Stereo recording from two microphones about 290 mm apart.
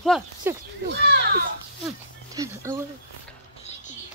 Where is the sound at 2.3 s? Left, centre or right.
Centre.